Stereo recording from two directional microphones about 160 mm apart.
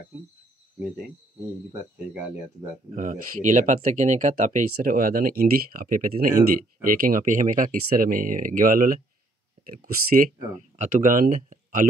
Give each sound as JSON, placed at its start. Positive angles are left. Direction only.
{"t": 2.1, "sound": "speech", "side_deg": -10}
{"t": 2.9, "sound": "speech", "side_deg": -50}
{"t": 10.8, "sound": "speech", "side_deg": -55}